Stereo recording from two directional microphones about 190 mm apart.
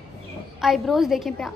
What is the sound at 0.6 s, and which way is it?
Speech, centre (ahead or behind).